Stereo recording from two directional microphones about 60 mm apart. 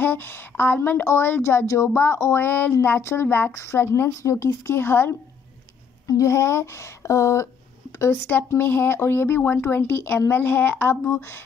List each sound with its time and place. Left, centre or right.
0.0 s speech: left
2.4 s speech: left
3.0 s speech: left
3.5 s speech: left
4.2 s speech: left
6.0 s speech: left
8.5 s speech: left